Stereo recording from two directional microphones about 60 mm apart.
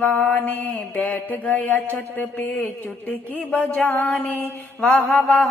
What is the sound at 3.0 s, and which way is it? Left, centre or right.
Mantra, left.